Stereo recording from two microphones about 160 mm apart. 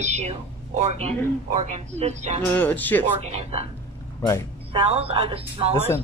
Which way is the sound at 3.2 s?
40° right (ahead or behind).